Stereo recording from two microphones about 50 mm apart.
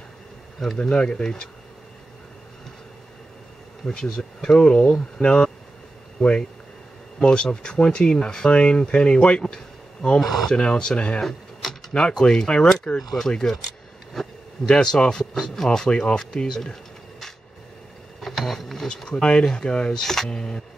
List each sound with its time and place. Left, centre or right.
0.7 s speech: centre
3.8 s speech: centre
6.2 s speech: centre
10.2 s speech: centre
10.5 s speech: centre
14.2 s a sound: centre
14.7 s speech: centre
18.2 s bee: centre
19.2 s speech: centre
20.2 s speech: centre